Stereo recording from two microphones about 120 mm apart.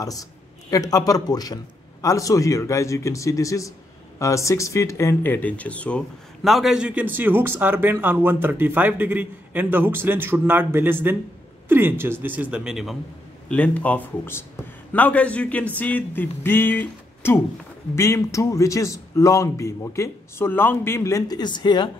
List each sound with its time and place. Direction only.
0.0 s a man's voice: 30° left (ahead or behind); by 12.9 s 5° right (ahead or behind)
13.5 s a man's voice: 10° left (ahead or behind); by 21.9 s 40° left (ahead or behind)